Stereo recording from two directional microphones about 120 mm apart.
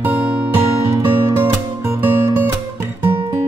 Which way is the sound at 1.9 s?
25° right (ahead or behind).